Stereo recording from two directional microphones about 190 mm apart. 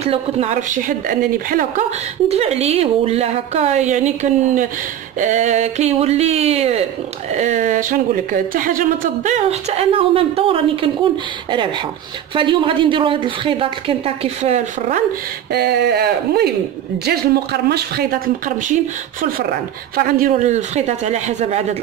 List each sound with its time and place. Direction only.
0.0 s a woman's voice: 35° right (ahead or behind)
2.2 s a woman's voice: 35° right (ahead or behind)
12.4 s a woman's voice: 25° right (ahead or behind)
15.5 s a woman's voice: 60° right (ahead or behind); by 21.7 s 35° right (ahead or behind)